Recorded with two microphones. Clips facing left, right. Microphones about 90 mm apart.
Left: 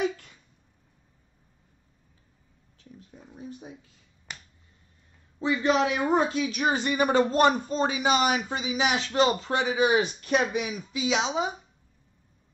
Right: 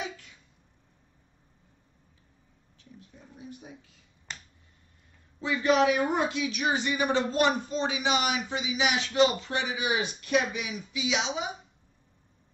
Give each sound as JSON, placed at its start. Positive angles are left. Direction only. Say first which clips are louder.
{"t": 3.3, "sound": "speech", "louder": "left 4 dB", "side_deg": 35}
{"t": 4.3, "sound": "finger snapping", "louder": "even", "side_deg": 10}
{"t": 5.4, "sound": "speech", "louder": "even", "side_deg": 30}